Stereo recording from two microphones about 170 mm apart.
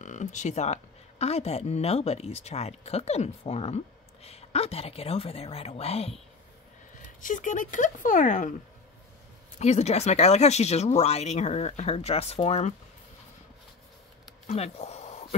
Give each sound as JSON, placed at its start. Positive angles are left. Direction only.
{"t": 0.0, "sound": "speech", "side_deg": 45}
{"t": 7.2, "sound": "speech", "side_deg": 50}
{"t": 9.6, "sound": "speech", "side_deg": 40}
{"t": 14.5, "sound": "a sound", "side_deg": 40}